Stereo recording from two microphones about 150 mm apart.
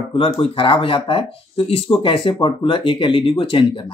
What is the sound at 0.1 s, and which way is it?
Speech, 35° left (ahead or behind).